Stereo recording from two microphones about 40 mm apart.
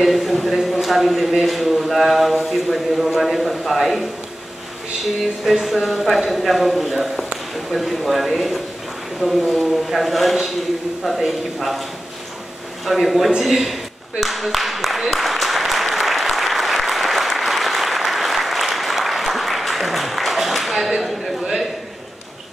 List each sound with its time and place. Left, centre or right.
0.0 s speech: centre
5.2 s speech: centre
12.8 s speech: centre
14.2 s applause: centre